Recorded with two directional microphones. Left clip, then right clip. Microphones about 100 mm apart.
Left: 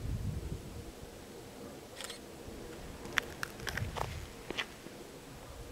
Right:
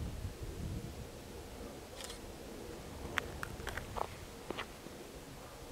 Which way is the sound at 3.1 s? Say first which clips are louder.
Left 4 dB; 25° left (ahead or behind).